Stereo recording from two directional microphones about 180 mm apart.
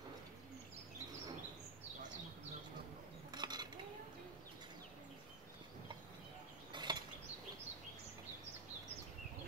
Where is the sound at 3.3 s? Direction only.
25° right (ahead or behind).